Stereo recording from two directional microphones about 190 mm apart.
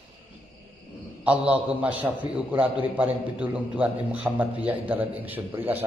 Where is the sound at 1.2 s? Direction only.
5° right (ahead or behind).